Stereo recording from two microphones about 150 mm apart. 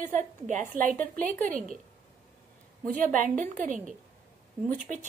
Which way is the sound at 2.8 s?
60° right (ahead or behind).